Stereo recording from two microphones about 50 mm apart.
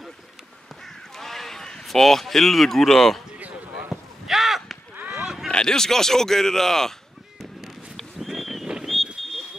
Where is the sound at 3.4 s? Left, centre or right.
Right.